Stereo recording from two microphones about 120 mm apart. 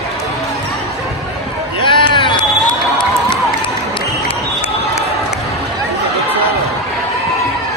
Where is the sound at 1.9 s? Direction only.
40° left (ahead or behind).